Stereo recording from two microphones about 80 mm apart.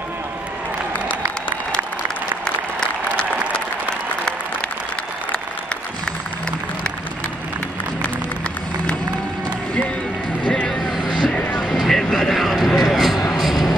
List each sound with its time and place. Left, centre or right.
10.5 s vehicle: centre
11.0 s music: left
11.3 s music: centre
11.7 s a sound: centre